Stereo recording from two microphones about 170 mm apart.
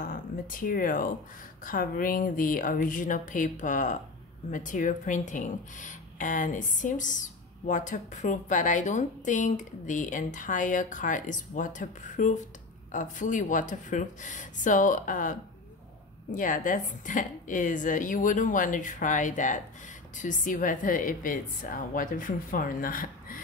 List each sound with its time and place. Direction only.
0.0 s a woman's voice: 55° left (ahead or behind)